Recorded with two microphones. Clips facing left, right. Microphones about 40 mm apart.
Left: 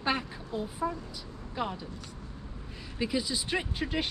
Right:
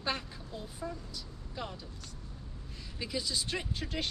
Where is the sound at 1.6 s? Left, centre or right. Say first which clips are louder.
Left 8 dB; centre.